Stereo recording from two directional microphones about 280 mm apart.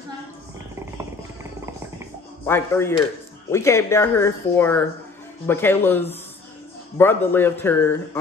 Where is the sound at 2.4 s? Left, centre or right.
Centre.